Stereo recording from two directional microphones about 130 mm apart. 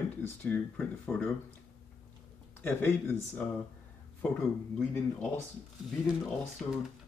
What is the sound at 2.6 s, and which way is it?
Speech, 15° left (ahead or behind).